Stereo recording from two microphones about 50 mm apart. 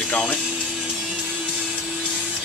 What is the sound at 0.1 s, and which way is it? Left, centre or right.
Speech, left.